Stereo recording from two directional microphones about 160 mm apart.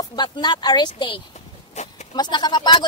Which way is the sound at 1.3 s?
45° left (ahead or behind).